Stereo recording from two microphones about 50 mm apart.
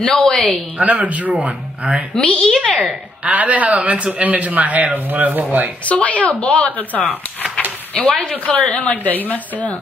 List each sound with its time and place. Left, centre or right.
0.0 s a woman's voice: centre
0.7 s speech: right
2.2 s a woman's voice: left
2.8 s speech: right
5.9 s a woman's voice: left
8.5 s a woman's voice: left